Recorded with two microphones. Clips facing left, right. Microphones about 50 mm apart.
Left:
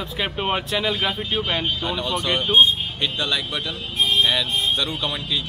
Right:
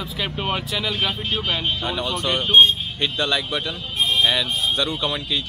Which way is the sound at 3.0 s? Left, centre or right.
Centre.